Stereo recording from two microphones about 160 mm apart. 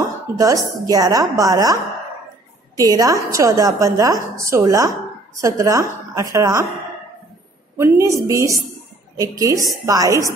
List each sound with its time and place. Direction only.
0.4 s a woman's voice: 20° right (ahead or behind)
7.7 s a woman's voice: 20° right (ahead or behind)